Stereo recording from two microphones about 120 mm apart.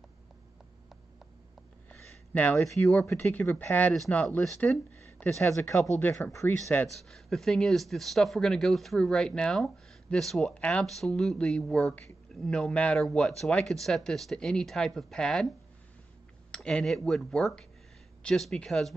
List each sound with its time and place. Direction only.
1.9 s a sound: 15° left (ahead or behind)
2.5 s speech: 25° left (ahead or behind)
7.1 s speech: 5° left (ahead or behind)
16.5 s speech: 5° left (ahead or behind)